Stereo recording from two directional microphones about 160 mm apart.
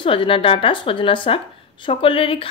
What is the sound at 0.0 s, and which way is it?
Speech, 30° left (ahead or behind).